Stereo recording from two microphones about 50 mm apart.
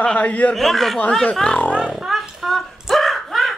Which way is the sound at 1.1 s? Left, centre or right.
Centre.